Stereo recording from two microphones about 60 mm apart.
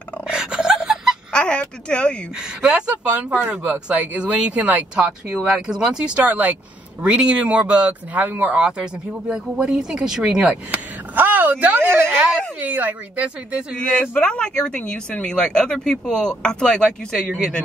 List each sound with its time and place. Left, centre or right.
0.3 s gasp: centre
1.3 s a woman's voice: centre
2.6 s speech: centre
8.5 s speech: centre
10.7 s a sound: right
12.5 s speech: right
14.1 s speech: centre